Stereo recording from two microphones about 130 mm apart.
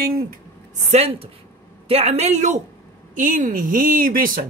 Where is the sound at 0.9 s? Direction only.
50° right (ahead or behind).